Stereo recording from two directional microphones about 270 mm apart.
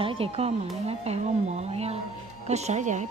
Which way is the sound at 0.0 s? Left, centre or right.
Centre.